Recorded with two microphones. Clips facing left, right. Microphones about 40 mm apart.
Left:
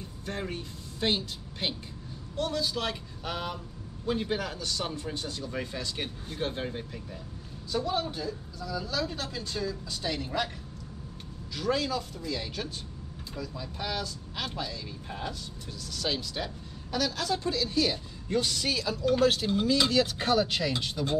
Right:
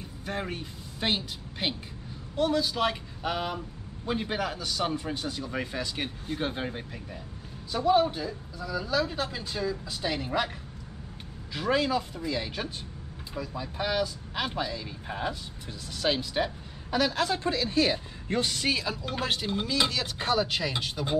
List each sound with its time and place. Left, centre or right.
0.3 s a man's voice: centre
11.5 s a woman's voice: right; by 20.7 s centre
21.0 s a woman's voice: right